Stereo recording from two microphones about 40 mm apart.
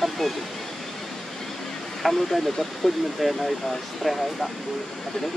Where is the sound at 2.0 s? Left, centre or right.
Centre.